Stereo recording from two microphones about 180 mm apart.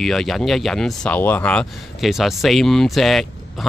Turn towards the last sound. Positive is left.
turn(degrees=0)  # may be behind; listen again after turning